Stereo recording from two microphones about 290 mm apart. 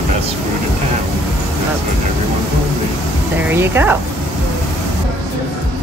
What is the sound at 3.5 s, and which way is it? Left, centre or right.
Speech, centre.